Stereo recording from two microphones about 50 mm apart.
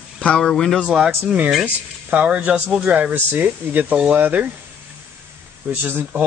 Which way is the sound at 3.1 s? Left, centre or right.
Right.